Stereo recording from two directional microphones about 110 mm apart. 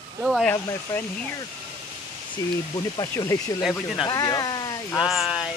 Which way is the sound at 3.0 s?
35° left (ahead or behind).